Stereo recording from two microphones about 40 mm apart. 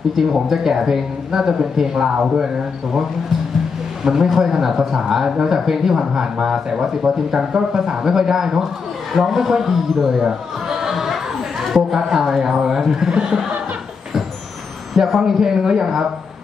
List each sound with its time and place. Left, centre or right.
0.1 s speech: centre
4.0 s a man's voice: centre
9.9 s a man's voice: centre
10.8 s a sound: centre
11.6 s speech: centre
15.0 s speech: centre